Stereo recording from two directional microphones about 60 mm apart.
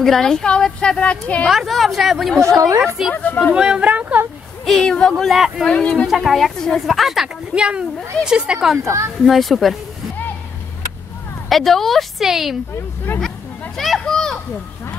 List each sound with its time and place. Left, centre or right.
0.0 s a woman's voice: centre
1.5 s a woman's voice: centre
2.4 s a woman's voice: right
3.0 s a woman's voice: centre; by 4.2 s right
4.6 s a woman's voice: centre
7.5 s a woman's voice: centre
8.8 s speech: right
9.3 s a woman's voice: centre
11.4 s a woman's voice: centre
13.1 s speech: left
13.7 s children playing: centre